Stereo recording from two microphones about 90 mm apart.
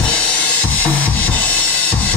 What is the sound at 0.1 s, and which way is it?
Drum, 15° left (ahead or behind).